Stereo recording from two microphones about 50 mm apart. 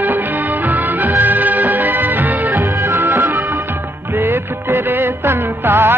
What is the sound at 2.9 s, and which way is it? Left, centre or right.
Music, right.